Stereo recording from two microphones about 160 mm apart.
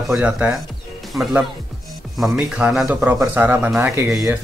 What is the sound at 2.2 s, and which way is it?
Speech, 5° right (ahead or behind).